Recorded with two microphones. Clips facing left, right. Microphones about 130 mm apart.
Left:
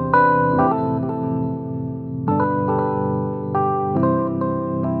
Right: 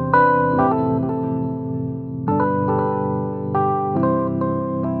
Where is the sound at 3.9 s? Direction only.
Centre (ahead or behind).